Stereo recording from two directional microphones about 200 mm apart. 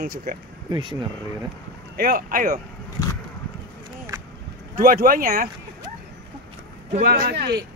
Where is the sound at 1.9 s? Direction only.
45° right (ahead or behind).